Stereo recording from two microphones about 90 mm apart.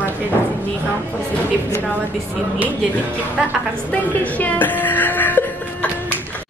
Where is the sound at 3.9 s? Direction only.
15° left (ahead or behind).